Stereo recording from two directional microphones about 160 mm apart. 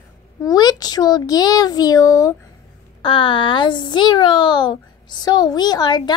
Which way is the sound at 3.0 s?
30° left (ahead or behind).